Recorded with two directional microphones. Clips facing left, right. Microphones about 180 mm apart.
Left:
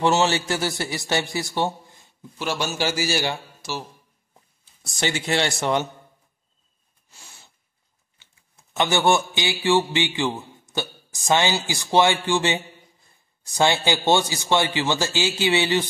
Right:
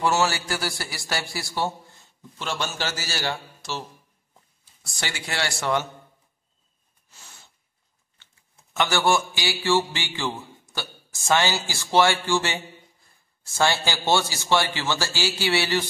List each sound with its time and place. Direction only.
0.0 s a man's voice: 25° left (ahead or behind)
2.3 s a man's voice: 10° left (ahead or behind)
4.8 s a man's voice: 20° left (ahead or behind)
7.1 s sneeze: 10° left (ahead or behind)
8.7 s a man's voice: 20° left (ahead or behind)